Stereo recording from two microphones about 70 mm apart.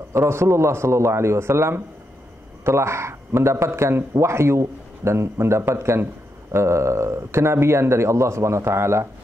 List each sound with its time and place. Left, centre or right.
0.1 s speech: right